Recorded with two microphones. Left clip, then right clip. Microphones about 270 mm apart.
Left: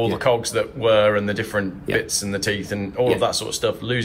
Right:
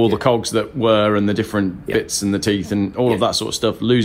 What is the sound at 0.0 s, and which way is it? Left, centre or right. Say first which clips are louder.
Speech: right 3 dB; right.